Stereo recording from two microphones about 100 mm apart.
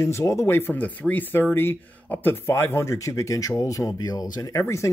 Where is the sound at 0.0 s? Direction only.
30° left (ahead or behind).